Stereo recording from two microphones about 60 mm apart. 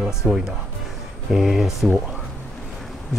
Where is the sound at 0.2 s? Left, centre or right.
Centre.